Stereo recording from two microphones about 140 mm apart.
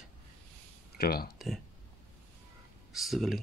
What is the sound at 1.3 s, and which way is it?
Speech, centre (ahead or behind).